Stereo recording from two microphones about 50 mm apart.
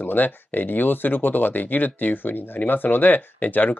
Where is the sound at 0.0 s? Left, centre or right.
Left.